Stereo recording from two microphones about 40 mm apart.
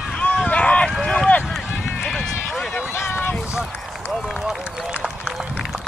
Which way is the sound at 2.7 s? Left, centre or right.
Left.